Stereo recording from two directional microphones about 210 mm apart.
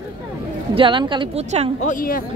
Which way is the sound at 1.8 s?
40° left (ahead or behind).